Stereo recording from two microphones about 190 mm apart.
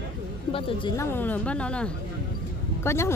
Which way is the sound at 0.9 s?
10° left (ahead or behind).